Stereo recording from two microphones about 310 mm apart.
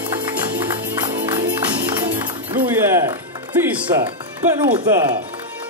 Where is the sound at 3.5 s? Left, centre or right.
Centre.